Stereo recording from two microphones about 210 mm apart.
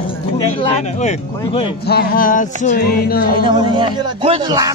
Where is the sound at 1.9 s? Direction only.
45° left (ahead or behind).